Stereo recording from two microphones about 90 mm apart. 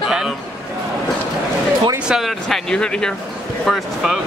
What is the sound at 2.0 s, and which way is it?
Speech, 5° right (ahead or behind).